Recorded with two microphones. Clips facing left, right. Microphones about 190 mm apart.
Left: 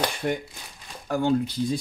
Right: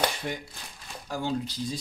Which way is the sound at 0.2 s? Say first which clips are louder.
Left 7 dB; 55° left (ahead or behind).